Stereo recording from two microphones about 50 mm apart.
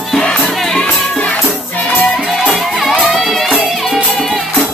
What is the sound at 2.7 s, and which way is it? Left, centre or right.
Music, centre.